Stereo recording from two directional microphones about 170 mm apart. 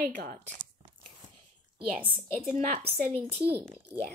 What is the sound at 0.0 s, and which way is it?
Speech, 55° right (ahead or behind).